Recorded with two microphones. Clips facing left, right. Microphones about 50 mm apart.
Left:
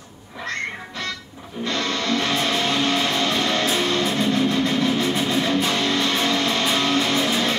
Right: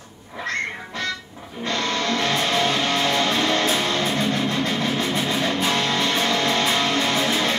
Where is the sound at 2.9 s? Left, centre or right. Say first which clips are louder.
Even; centre.